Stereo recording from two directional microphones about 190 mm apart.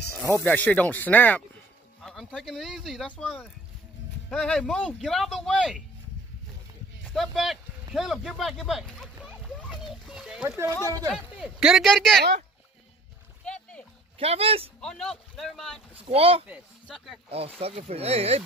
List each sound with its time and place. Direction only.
0.4 s speech: 5° left (ahead or behind)
7.1 s speech: centre (ahead or behind)
13.5 s splash: 5° left (ahead or behind)
14.1 s speech: 30° right (ahead or behind)
14.8 s speech: 5° left (ahead or behind)
16.1 s speech: 30° right (ahead or behind)
16.8 s speech: centre (ahead or behind)
17.3 s speech: 30° right (ahead or behind)